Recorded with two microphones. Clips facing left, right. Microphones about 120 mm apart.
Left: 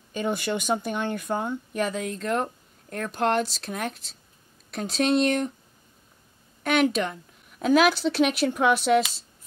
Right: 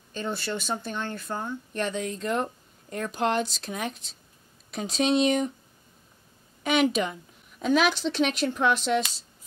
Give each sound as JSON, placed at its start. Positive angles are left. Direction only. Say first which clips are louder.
{"t": 0.1, "sound": "speech", "louder": "left 4 dB", "side_deg": 15}
{"t": 1.7, "sound": "a woman's voice", "louder": "right 1 dB", "side_deg": 5}
{"t": 6.6, "sound": "a woman's voice", "louder": "left 1 dB", "side_deg": 0}